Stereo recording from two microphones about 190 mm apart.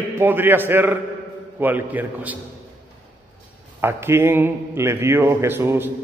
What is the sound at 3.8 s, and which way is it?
A man's voice, 15° right (ahead or behind).